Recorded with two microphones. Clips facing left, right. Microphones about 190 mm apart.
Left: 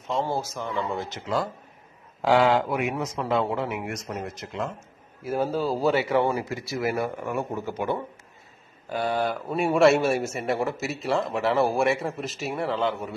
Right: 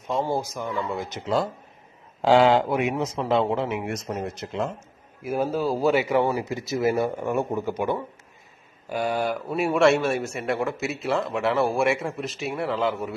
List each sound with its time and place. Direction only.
0.1 s speech: 15° right (ahead or behind); by 4.6 s 30° right (ahead or behind)
5.2 s speech: 10° right (ahead or behind)